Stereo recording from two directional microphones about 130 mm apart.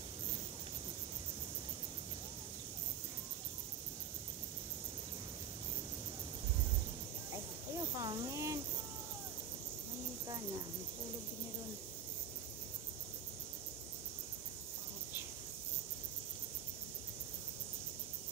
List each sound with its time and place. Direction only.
7.3 s snake: 30° right (ahead or behind)